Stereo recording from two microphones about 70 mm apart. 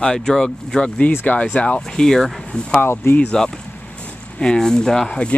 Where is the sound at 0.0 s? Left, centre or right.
Centre.